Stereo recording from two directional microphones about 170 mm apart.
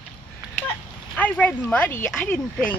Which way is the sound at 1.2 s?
10° left (ahead or behind).